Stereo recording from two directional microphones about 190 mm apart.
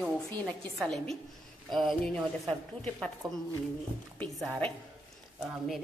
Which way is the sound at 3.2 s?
25° right (ahead or behind).